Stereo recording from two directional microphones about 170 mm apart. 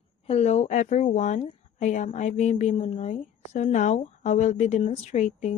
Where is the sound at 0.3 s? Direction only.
40° left (ahead or behind).